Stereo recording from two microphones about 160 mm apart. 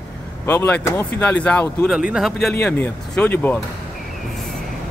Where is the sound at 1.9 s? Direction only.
5° right (ahead or behind); by 3.6 s 10° left (ahead or behind).